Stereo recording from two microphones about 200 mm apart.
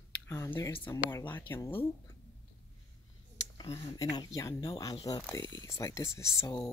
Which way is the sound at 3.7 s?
20° left (ahead or behind).